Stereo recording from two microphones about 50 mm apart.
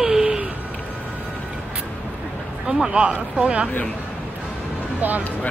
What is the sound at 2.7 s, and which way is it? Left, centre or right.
Speech, centre.